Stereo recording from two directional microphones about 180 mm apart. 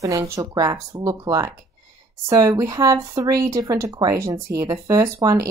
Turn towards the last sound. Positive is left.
turn(degrees=-20)  # may be behind; listen again after turning